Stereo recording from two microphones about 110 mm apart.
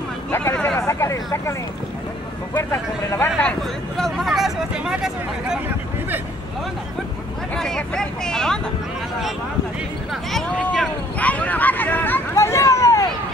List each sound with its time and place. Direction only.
0.3 s speech: 20° left (ahead or behind)
0.7 s vehicle: 25° left (ahead or behind)
2.5 s a man's voice: 25° left (ahead or behind)
3.3 s speech: 5° left (ahead or behind)
7.5 s speech: 5° left (ahead or behind)
10.3 s speech: centre (ahead or behind)
11.1 s a sound: 15° left (ahead or behind)